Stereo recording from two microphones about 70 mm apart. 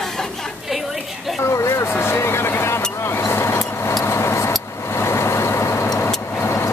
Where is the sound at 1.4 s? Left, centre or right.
Left.